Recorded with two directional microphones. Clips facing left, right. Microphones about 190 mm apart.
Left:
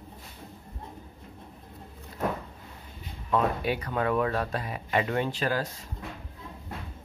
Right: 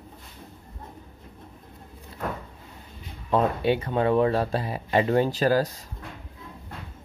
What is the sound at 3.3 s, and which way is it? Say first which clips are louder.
Speech: right 4 dB; 25° right (ahead or behind).